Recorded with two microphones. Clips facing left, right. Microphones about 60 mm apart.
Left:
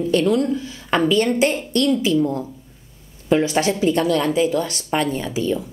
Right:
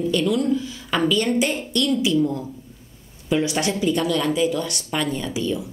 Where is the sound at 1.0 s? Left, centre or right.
Left.